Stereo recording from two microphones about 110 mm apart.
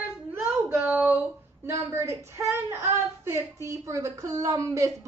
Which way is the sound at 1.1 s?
25° right (ahead or behind).